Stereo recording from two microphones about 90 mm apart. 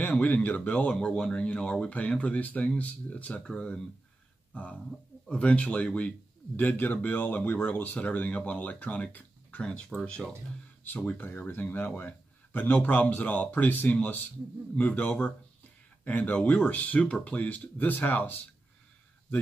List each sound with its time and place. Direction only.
0.0 s speech: 20° left (ahead or behind)
5.3 s speech: 10° left (ahead or behind)